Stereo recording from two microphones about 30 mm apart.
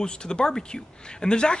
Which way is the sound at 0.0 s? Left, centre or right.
Left.